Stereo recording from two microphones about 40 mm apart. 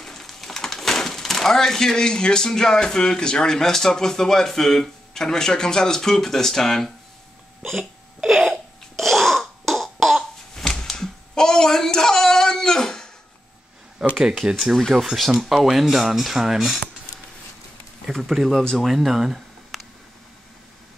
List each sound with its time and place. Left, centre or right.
0.0 s a sound: centre
2.8 s speech: centre
8.2 s a sound: centre
8.9 s throat clearing: centre
10.5 s a sound: centre
14.1 s speech: centre
14.8 s speech: centre
15.1 s speech: centre
18.2 s speech: centre